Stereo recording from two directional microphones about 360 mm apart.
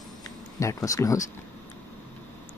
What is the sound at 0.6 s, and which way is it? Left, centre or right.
Speech, centre.